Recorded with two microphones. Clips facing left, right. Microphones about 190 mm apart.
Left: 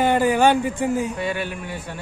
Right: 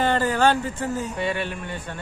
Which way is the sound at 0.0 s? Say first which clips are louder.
Left 3 dB; 15° left (ahead or behind).